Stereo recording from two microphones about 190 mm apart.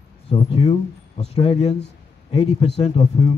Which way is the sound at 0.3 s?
30° left (ahead or behind).